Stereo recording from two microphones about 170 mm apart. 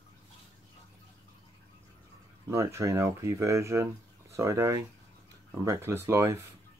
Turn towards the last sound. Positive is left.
turn(degrees=-15)  # may be behind; listen again after turning